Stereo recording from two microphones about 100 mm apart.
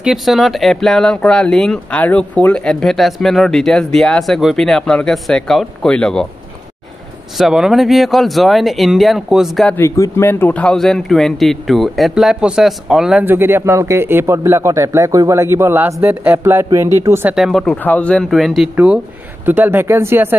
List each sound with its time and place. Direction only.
0.0 s speech: centre (ahead or behind)
7.3 s speech: 5° right (ahead or behind)
9.8 s speech: 30° left (ahead or behind); by 13.2 s 5° right (ahead or behind)
13.2 s speech: 20° right (ahead or behind)
17.3 s speech: centre (ahead or behind)
17.6 s speech: 15° left (ahead or behind)
19.4 s speech: 20° right (ahead or behind)